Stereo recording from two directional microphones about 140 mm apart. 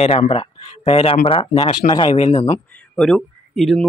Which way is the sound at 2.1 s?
40° left (ahead or behind).